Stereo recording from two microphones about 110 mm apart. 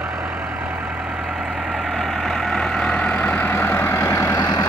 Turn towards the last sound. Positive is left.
turn(degrees=25)  # may be behind; listen again after turning